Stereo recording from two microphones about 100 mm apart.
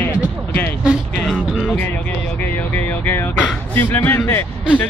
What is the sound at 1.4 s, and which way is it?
Speech, 5° right (ahead or behind).